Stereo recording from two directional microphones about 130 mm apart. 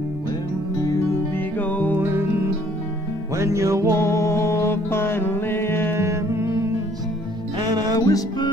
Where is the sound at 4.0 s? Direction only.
20° left (ahead or behind).